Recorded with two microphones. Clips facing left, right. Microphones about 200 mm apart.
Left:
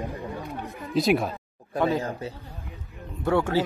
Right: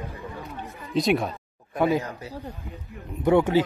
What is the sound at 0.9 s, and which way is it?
Speech, centre (ahead or behind).